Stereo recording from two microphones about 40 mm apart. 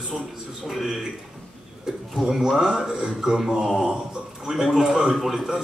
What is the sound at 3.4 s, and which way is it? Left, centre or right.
A man's voice, centre.